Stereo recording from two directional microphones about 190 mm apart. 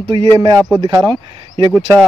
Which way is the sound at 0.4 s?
25° right (ahead or behind).